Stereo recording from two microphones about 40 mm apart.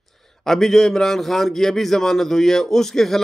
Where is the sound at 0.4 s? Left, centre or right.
Centre.